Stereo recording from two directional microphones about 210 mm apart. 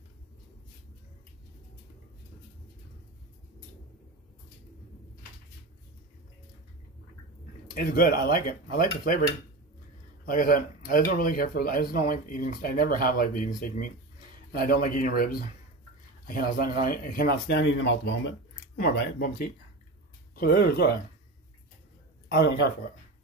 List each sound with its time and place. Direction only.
7.7 s speech: 40° left (ahead or behind)
10.2 s speech: 40° left (ahead or behind); by 18.1 s 60° left (ahead or behind)
18.9 s speech: 45° left (ahead or behind)
22.3 s speech: 55° left (ahead or behind)